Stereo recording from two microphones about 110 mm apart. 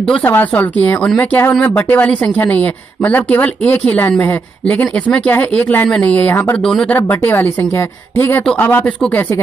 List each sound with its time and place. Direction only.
0.2 s speech: 15° left (ahead or behind)
6.6 s speech: 5° left (ahead or behind)
6.9 s speech: 20° left (ahead or behind)